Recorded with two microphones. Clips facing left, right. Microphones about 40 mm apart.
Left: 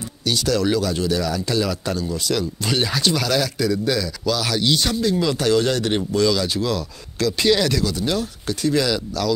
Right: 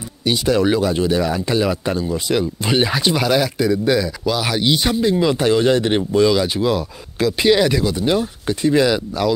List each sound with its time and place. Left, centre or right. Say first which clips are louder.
0.2 s speech: right 4 dB; right